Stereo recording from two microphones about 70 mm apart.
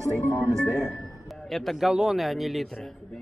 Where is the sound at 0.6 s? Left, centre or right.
Centre.